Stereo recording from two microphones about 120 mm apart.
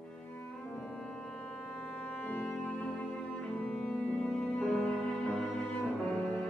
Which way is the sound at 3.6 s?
5° left (ahead or behind).